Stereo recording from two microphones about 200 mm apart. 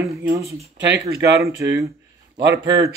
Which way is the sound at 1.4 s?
15° right (ahead or behind).